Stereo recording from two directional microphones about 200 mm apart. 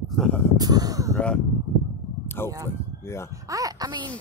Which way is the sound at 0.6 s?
20° right (ahead or behind).